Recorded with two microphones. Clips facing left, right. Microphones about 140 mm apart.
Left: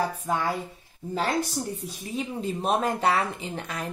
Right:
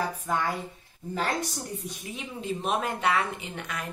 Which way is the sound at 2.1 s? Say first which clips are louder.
Left 5 dB; 35° left (ahead or behind).